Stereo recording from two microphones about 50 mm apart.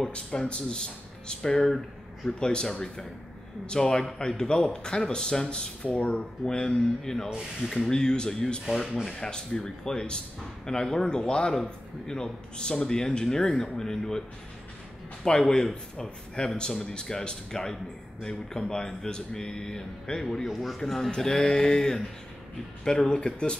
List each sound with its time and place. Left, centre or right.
0.0 s speech: centre
6.4 s speech: centre
15.2 s speech: centre